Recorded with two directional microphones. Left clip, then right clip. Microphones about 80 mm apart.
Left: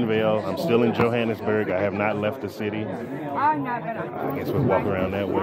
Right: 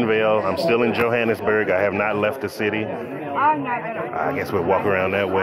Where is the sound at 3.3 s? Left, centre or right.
Left.